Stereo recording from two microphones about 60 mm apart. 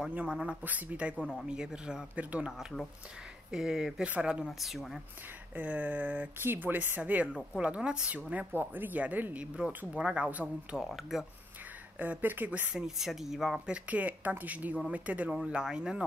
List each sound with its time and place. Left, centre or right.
0.1 s speech: centre
0.6 s speech: right
1.4 s speech: centre
3.5 s speech: centre
4.0 s speech: centre
4.5 s speech: centre
5.6 s speech: right
8.5 s speech: right
10.8 s speech: centre
12.0 s speech: right
12.7 s speech: centre
13.7 s speech: right